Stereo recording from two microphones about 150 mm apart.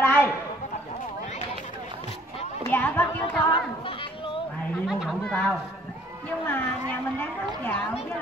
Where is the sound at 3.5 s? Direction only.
35° left (ahead or behind).